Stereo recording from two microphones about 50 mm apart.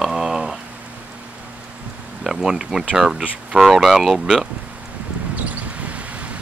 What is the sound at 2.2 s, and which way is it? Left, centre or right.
Speech, centre.